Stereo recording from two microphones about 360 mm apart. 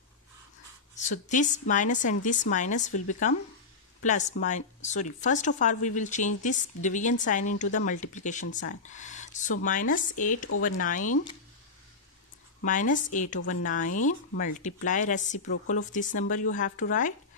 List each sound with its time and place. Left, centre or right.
1.1 s speech: left
8.5 s speech: left
8.8 s speech: centre
12.6 s speech: left
15.4 s speech: left
15.7 s speech: left